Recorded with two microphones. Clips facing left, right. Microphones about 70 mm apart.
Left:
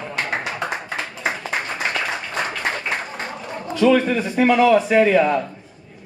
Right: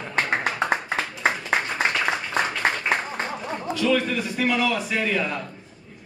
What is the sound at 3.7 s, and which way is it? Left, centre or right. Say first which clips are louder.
A man's voice: left 7 dB; left.